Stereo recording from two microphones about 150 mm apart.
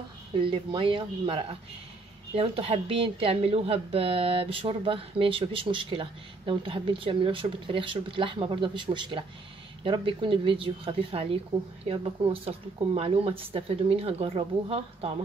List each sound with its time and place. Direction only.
0.4 s a woman's voice: 35° right (ahead or behind)